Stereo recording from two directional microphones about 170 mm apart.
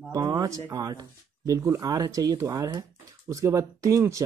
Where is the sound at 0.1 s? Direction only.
20° right (ahead or behind).